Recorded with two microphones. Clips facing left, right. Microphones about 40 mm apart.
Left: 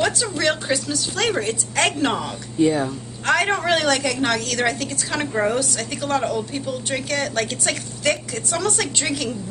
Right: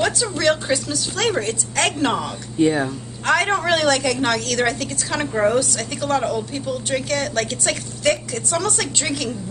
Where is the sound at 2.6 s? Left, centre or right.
Centre.